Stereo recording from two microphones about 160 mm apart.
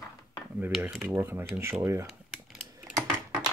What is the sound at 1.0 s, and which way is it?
Speech, 15° right (ahead or behind).